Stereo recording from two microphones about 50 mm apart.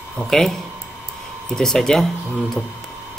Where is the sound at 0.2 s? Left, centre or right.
Centre.